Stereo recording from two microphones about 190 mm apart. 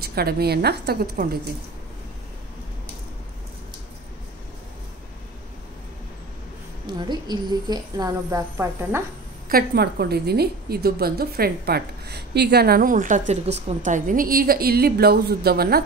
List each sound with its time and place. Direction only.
0.0 s a woman's voice: 55° right (ahead or behind)
7.0 s a woman's voice: 25° right (ahead or behind)
9.5 s a woman's voice: 55° right (ahead or behind)